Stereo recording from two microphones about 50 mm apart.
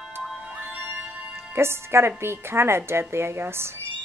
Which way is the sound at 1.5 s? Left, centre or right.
Right.